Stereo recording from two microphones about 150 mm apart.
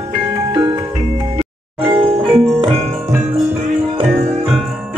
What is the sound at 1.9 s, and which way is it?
Music, 35° right (ahead or behind).